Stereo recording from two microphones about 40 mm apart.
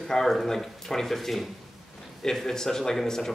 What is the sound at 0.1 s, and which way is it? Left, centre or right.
Speech, centre.